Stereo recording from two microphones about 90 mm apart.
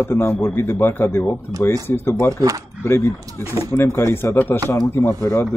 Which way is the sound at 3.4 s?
35° right (ahead or behind).